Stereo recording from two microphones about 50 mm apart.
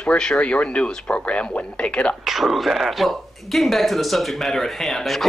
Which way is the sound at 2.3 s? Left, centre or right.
Centre.